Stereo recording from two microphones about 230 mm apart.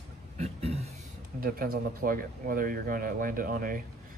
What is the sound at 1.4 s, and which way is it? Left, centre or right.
Speech, right.